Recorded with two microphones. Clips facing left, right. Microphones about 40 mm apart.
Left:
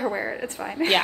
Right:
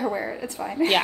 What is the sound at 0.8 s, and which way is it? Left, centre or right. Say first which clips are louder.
Speech: right 1 dB; left.